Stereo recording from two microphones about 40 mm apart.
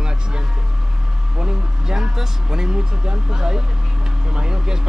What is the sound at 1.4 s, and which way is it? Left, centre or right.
Speech, centre.